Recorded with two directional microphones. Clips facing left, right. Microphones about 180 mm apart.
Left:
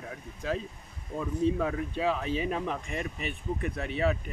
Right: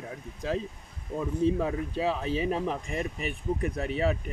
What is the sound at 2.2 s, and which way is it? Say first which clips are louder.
Speech: right 2 dB; 35° right (ahead or behind).